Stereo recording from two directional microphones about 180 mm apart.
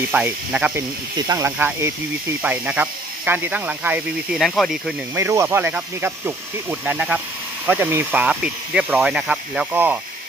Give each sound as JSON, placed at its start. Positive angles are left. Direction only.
{"t": 0.1, "sound": "speech", "side_deg": -5}
{"t": 1.1, "sound": "speech", "side_deg": -20}
{"t": 5.1, "sound": "speech", "side_deg": -15}